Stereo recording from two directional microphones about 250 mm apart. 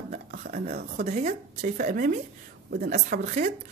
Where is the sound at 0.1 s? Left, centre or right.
Right.